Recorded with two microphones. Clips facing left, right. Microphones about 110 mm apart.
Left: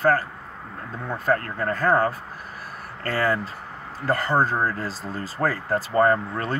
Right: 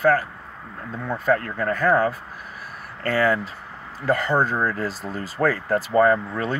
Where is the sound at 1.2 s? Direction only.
40° left (ahead or behind).